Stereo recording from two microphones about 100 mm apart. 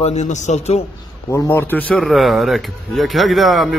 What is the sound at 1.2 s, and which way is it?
Speech, 25° left (ahead or behind).